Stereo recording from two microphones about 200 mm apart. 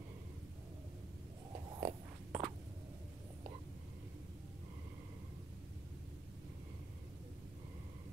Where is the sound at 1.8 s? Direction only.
30° right (ahead or behind).